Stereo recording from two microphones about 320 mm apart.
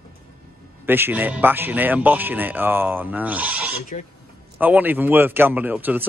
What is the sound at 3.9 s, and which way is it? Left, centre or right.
Speech, left.